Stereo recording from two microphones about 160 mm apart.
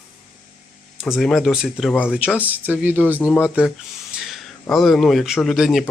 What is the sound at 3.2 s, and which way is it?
Speech, 10° left (ahead or behind).